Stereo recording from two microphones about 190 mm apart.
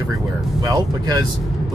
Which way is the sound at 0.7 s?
20° right (ahead or behind).